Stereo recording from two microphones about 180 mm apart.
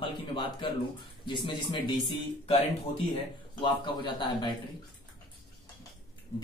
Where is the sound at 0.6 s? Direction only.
25° left (ahead or behind).